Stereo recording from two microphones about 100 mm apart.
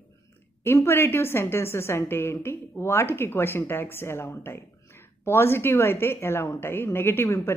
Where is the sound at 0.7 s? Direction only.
25° left (ahead or behind).